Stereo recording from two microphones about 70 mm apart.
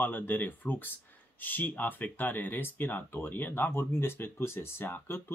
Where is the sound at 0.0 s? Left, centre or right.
Left.